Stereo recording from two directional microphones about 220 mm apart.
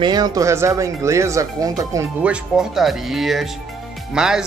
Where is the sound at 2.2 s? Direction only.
5° right (ahead or behind).